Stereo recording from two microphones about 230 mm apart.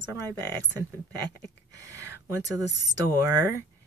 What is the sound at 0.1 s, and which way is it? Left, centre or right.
Speech, centre.